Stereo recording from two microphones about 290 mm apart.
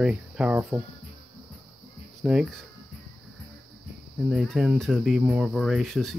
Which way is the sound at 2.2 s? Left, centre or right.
Centre.